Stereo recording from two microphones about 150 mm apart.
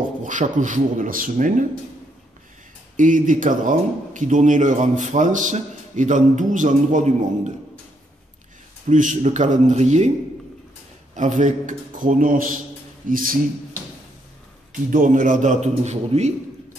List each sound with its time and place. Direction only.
0.2 s a man's voice: 55° right (ahead or behind)
3.0 s a man's voice: 60° right (ahead or behind)
8.8 s speech: 60° right (ahead or behind)
11.1 s a man's voice: 55° right (ahead or behind)
14.7 s a man's voice: 60° right (ahead or behind)